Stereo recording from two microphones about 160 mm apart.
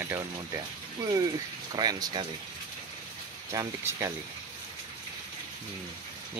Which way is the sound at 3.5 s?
20° right (ahead or behind).